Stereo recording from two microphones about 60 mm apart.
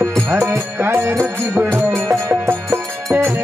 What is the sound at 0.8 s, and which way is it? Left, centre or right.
Music, right.